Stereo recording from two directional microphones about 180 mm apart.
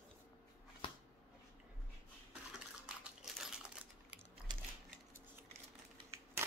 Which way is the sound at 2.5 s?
5° right (ahead or behind).